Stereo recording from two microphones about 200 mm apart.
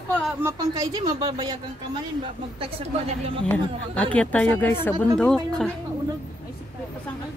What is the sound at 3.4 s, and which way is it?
A woman's voice, 5° left (ahead or behind).